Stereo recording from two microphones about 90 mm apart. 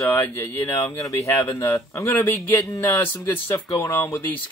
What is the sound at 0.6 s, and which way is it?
Speech, 25° left (ahead or behind).